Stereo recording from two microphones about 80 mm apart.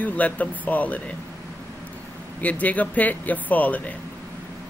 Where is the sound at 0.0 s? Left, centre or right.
Centre.